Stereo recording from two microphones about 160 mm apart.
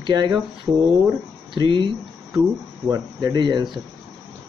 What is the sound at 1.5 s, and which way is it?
Speech, 30° right (ahead or behind).